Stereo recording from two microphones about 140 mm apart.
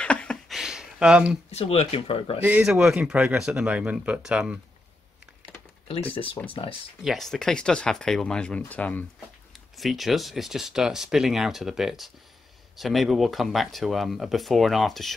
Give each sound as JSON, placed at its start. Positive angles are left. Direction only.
{"t": 0.0, "sound": "a sound", "side_deg": 10}
{"t": 1.5, "sound": "speech", "side_deg": 45}
{"t": 2.4, "sound": "speech", "side_deg": -5}
{"t": 7.0, "sound": "speech", "side_deg": 0}
{"t": 9.5, "sound": "speech", "side_deg": 0}